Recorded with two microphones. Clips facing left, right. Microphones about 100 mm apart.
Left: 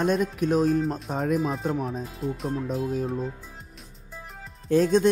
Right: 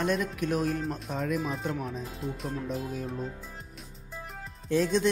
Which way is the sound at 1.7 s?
35° left (ahead or behind).